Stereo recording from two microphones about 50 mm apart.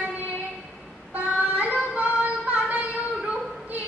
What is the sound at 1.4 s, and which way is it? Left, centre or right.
Yodeling, right.